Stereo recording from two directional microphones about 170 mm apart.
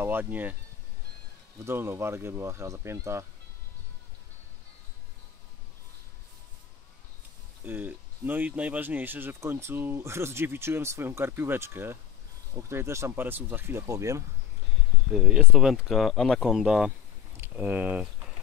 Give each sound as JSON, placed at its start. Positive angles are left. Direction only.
{"t": 0.0, "sound": "speech", "side_deg": -10}
{"t": 1.7, "sound": "speech", "side_deg": -15}
{"t": 7.6, "sound": "speech", "side_deg": -10}
{"t": 15.1, "sound": "speech", "side_deg": -5}